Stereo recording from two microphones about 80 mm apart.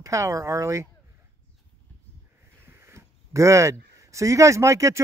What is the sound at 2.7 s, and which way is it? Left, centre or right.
Speech, right.